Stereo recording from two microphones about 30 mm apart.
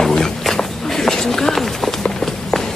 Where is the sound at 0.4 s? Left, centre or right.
Centre.